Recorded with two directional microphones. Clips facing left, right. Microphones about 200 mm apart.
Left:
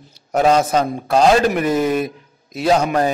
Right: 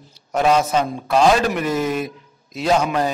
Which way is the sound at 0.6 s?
55° left (ahead or behind).